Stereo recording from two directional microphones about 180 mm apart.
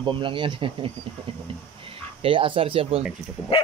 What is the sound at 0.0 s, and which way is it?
Speech, 30° right (ahead or behind).